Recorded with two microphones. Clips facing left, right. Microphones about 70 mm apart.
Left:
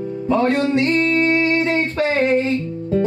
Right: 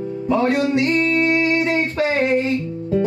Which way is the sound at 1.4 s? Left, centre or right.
Centre.